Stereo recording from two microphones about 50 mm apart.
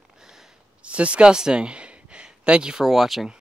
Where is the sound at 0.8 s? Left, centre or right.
Right.